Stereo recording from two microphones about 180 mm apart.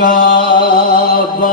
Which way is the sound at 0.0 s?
50° left (ahead or behind).